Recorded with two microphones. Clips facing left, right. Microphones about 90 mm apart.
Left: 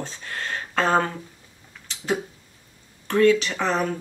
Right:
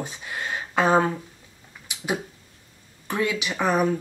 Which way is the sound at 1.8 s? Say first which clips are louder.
Left 2 dB; 15° right (ahead or behind).